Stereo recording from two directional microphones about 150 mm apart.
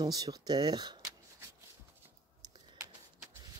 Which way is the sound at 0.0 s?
25° right (ahead or behind).